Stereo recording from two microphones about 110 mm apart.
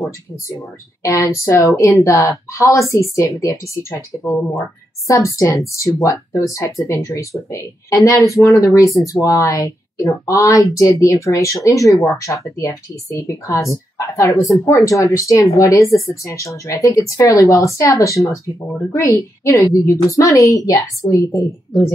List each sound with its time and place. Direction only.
1.0 s a woman's voice: 30° left (ahead or behind)